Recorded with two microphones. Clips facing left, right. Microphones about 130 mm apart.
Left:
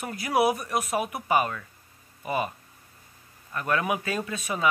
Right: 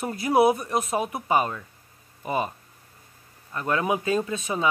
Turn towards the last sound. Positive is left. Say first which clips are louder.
# right 4 dB
turn(degrees=-25)  # may be behind; listen again after turning